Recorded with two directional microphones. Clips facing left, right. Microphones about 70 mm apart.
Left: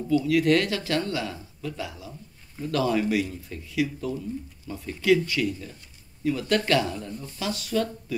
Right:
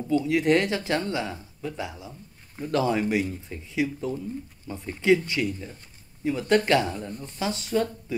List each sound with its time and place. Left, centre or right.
0.1 s speech: right